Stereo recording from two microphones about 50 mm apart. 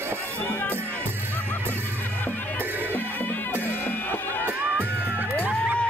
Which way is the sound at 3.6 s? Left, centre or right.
Left.